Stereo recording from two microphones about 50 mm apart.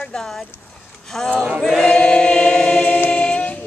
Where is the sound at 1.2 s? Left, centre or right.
Centre.